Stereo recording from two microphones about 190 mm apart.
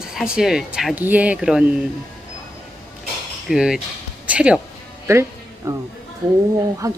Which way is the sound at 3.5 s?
5° right (ahead or behind).